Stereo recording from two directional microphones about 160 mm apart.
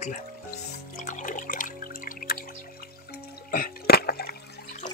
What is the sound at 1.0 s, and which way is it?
Music, 50° left (ahead or behind).